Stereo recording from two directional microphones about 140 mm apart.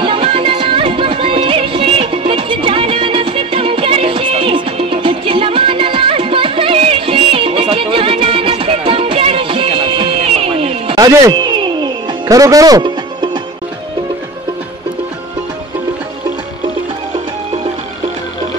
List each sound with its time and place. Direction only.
0.0 s music: 40° right (ahead or behind)
11.0 s music: 25° right (ahead or behind)